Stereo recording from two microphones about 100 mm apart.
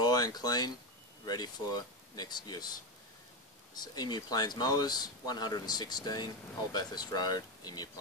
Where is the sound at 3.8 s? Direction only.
45° left (ahead or behind).